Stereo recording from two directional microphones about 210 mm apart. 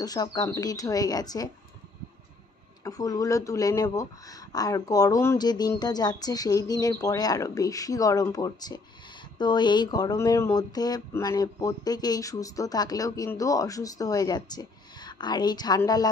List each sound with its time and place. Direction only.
0.0 s speech: 20° left (ahead or behind)
2.8 s speech: 15° left (ahead or behind)